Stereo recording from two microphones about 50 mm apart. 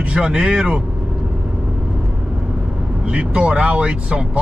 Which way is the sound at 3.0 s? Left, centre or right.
Right.